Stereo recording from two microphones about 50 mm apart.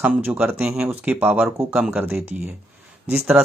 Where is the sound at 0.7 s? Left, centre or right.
Right.